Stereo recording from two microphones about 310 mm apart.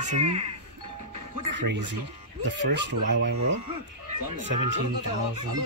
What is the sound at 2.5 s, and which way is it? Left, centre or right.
Speech, right.